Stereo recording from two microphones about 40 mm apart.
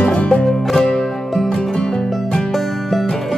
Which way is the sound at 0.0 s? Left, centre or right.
Left.